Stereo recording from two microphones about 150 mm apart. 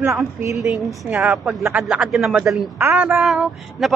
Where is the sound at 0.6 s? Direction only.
Centre (ahead or behind).